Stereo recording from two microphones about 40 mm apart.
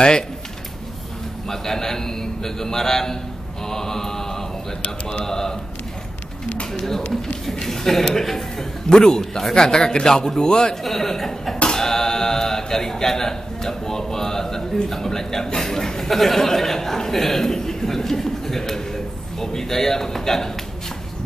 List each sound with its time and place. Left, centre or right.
1.5 s a man's voice: centre
3.6 s mantra: centre
5.2 s speech: centre
6.7 s speech: centre
10.8 s speech: centre